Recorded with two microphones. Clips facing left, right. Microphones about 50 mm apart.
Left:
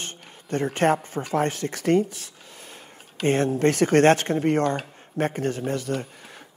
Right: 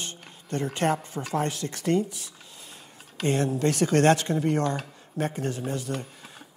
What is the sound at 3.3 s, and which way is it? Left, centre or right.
Speech, left.